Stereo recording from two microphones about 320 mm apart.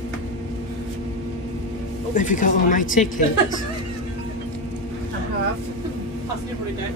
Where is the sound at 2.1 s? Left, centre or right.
Left.